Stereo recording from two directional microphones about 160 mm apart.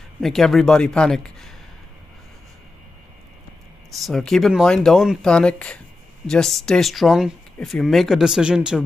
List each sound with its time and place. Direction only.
0.2 s speech: centre (ahead or behind)
3.9 s speech: centre (ahead or behind)